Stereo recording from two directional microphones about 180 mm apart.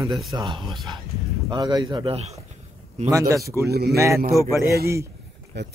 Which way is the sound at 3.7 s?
60° right (ahead or behind).